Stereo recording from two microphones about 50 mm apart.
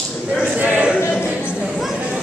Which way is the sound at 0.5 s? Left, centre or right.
Right.